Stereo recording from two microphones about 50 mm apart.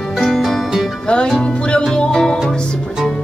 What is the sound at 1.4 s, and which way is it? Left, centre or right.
Music, left.